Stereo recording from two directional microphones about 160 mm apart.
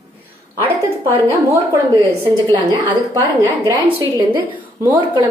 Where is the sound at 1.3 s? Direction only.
15° right (ahead or behind).